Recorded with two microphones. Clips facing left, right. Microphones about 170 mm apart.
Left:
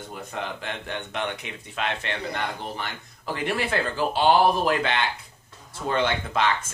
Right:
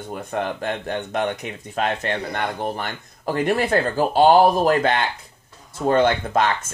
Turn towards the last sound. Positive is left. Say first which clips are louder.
# right 4 dB
turn(degrees=-45)  # may be behind; listen again after turning